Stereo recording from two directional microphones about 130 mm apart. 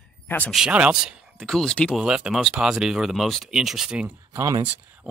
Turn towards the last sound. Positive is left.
turn(degrees=-25)  # may be behind; listen again after turning